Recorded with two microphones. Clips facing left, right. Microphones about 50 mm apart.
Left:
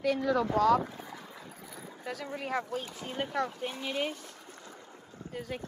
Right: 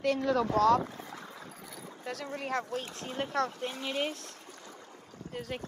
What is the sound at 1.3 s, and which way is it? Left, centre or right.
Boat, centre.